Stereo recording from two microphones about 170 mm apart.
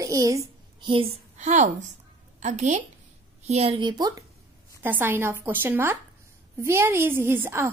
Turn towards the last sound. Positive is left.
turn(degrees=-15)  # may be behind; listen again after turning